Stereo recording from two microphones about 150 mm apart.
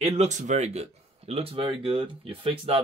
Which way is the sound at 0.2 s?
50° right (ahead or behind).